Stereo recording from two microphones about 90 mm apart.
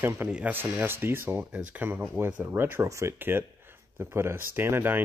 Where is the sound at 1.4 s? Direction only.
15° right (ahead or behind).